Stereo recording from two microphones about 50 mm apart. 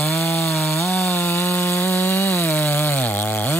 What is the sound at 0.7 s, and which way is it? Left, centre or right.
Chainsaw, left.